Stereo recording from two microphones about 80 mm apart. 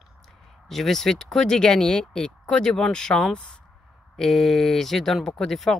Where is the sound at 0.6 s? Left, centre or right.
Centre.